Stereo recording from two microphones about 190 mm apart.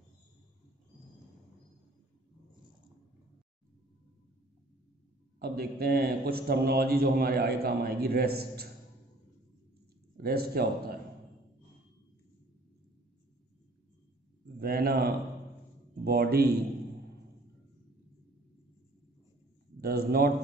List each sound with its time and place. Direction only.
5.4 s a man's voice: 55° right (ahead or behind)
10.1 s a man's voice: 55° right (ahead or behind)
14.6 s a man's voice: 50° right (ahead or behind)
19.8 s a man's voice: 55° right (ahead or behind)